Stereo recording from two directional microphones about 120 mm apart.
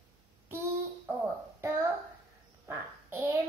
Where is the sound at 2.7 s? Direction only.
20° right (ahead or behind).